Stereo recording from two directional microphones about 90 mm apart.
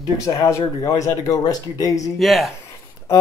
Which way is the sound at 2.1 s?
Centre (ahead or behind).